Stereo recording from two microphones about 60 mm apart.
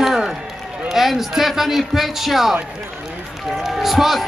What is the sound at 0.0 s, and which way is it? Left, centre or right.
Run, centre.